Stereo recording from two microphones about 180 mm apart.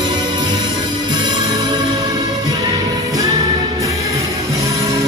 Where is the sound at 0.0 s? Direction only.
25° right (ahead or behind).